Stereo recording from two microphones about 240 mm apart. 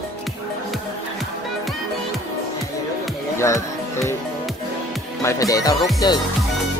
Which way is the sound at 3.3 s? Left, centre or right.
Centre.